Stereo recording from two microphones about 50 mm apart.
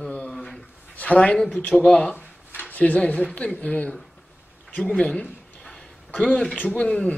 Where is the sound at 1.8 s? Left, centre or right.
Centre.